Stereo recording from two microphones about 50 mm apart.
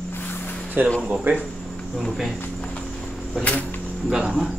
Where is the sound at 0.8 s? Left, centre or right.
Right.